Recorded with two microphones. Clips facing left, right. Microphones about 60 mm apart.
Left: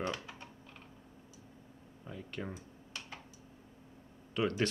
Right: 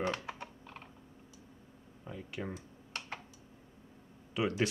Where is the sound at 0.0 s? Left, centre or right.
Right.